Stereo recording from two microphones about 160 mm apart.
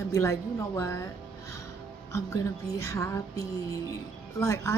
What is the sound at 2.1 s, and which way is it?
Music, 20° left (ahead or behind).